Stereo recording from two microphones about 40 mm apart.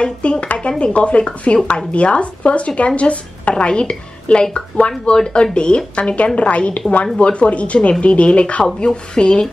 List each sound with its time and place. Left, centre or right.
0.0 s speech: left